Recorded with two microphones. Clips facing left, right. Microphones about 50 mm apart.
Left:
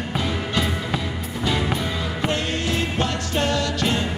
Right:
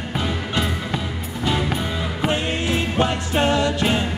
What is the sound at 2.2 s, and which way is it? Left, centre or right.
Music, centre.